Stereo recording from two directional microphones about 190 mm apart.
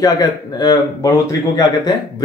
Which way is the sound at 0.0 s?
20° left (ahead or behind).